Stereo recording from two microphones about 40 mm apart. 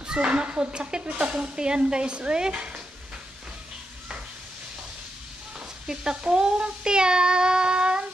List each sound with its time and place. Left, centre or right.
0.0 s speech: right
5.9 s speech: centre